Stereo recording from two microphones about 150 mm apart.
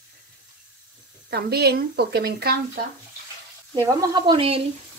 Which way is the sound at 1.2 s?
90° right.